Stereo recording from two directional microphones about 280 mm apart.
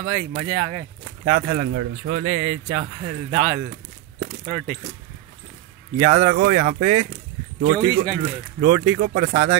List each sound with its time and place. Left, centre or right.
0.0 s speech: right
4.2 s coin: right
5.9 s speech: right